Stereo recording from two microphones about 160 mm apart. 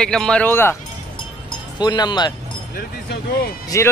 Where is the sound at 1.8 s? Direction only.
25° left (ahead or behind).